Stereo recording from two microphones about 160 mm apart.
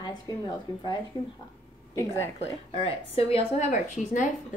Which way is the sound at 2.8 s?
40° left (ahead or behind).